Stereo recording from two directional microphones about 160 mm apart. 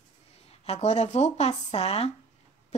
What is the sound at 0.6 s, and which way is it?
A woman's voice, 45° left (ahead or behind).